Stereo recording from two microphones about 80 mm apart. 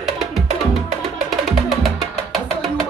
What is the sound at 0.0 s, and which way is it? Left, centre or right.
Music, centre.